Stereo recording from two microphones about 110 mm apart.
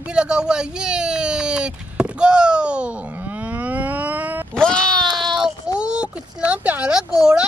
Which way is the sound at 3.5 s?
15° right (ahead or behind).